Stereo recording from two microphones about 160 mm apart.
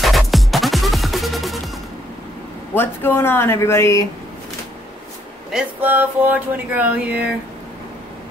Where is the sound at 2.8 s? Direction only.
15° left (ahead or behind).